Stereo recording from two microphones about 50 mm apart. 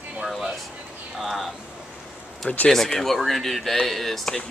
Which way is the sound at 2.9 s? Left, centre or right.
Centre.